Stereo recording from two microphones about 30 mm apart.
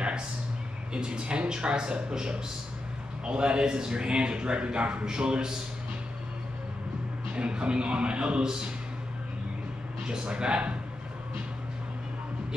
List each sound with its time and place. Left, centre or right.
0.9 s a man's voice: right
7.3 s a man's voice: right
8.4 s a man's voice: right
10.0 s a man's voice: right